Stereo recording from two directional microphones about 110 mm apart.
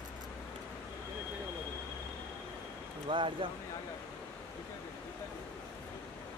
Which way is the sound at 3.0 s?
50° right (ahead or behind).